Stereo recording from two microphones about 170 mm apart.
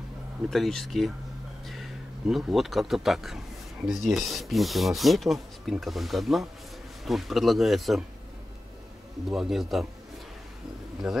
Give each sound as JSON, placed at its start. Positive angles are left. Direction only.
{"t": 0.5, "sound": "speech", "side_deg": 0}
{"t": 9.3, "sound": "speech", "side_deg": 0}
{"t": 11.0, "sound": "speech", "side_deg": -5}